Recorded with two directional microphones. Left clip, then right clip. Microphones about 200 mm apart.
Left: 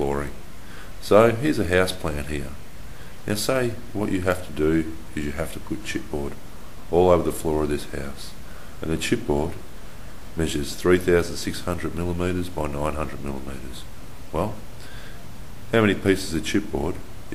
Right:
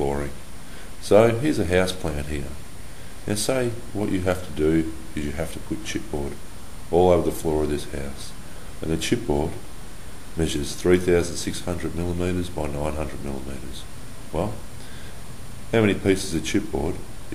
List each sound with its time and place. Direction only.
0.0 s a sound: 5° left (ahead or behind)
1.0 s speech: 5° left (ahead or behind)
10.4 s speech: 10° left (ahead or behind)
14.3 s speech: 10° left (ahead or behind)
15.7 s speech: 10° left (ahead or behind)